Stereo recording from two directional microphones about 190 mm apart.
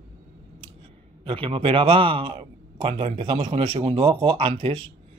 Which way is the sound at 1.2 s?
30° right (ahead or behind).